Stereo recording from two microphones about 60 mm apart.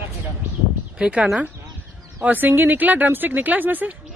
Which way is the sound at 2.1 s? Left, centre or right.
Right.